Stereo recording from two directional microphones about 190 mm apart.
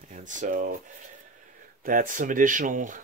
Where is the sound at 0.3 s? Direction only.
45° right (ahead or behind).